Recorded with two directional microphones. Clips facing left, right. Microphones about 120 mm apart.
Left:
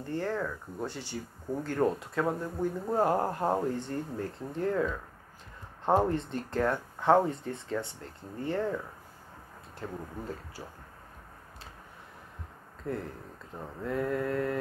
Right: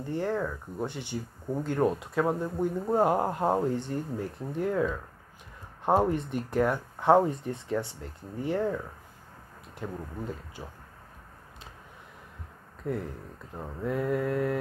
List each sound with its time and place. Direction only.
0.0 s speech: 15° right (ahead or behind)
10.2 s speech: 20° right (ahead or behind)
12.9 s speech: 20° right (ahead or behind)